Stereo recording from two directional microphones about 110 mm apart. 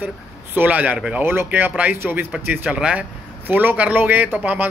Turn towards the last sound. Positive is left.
turn(degrees=-15)  # may be behind; listen again after turning